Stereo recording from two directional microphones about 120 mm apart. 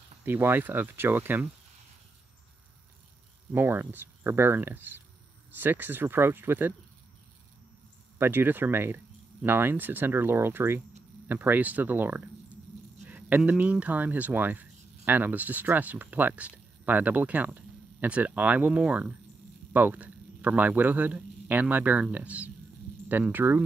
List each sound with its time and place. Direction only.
0.2 s speech: 15° right (ahead or behind)
3.5 s speech: 20° right (ahead or behind)
8.2 s speech: 15° right (ahead or behind)
13.0 s a sound: 15° right (ahead or behind)
13.4 s a man's voice: 10° right (ahead or behind)